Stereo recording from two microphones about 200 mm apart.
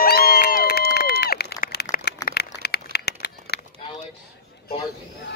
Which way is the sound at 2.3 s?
55° left (ahead or behind).